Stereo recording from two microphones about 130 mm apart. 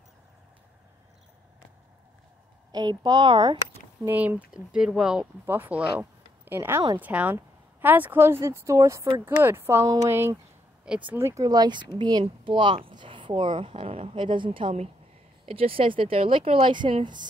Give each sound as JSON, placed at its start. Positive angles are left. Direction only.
{"t": 2.7, "sound": "speech", "side_deg": -35}
{"t": 4.1, "sound": "speech", "side_deg": -15}